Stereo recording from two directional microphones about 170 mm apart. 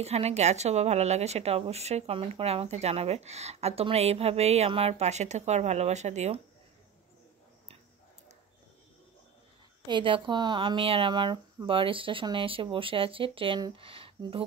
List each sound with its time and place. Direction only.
0.0 s a woman's voice: 40° right (ahead or behind)
9.8 s a woman's voice: 30° right (ahead or behind)